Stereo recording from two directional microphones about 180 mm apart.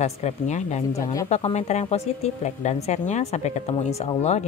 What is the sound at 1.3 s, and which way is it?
Speech, 35° left (ahead or behind).